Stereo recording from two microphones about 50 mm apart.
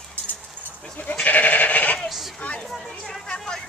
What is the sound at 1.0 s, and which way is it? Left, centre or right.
Goat, left.